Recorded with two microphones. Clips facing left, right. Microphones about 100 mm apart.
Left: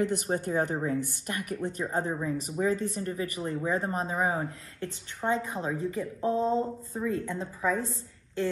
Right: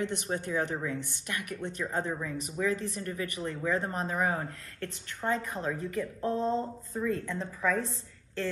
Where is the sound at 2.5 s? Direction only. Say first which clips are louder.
Left 2 dB; 35° left (ahead or behind).